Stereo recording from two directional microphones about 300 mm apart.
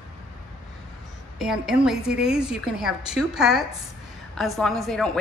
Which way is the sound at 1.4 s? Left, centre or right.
Centre.